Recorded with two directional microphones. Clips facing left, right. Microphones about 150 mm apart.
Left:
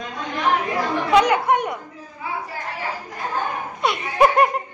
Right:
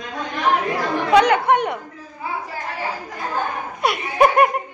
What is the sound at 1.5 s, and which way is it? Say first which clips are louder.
Speech: right 2 dB; 75° right (ahead or behind).